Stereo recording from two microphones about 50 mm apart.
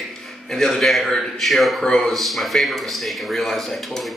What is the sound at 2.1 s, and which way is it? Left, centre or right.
A man's voice, centre.